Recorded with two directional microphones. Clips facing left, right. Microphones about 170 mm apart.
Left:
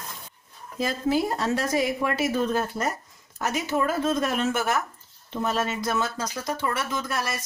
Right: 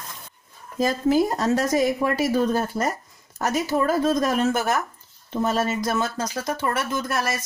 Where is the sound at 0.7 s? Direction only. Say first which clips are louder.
Right 5 dB; 40° right (ahead or behind).